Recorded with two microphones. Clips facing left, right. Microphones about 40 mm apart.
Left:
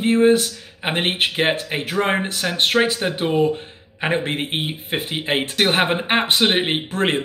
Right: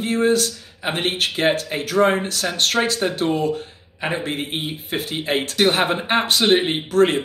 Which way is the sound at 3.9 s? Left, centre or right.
Left.